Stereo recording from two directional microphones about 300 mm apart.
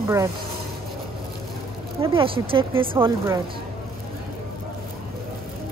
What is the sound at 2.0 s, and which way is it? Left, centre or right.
Speech, centre.